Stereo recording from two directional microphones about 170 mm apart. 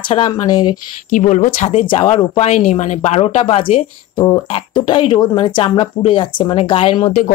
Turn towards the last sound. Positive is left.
turn(degrees=30)  # may be behind; listen again after turning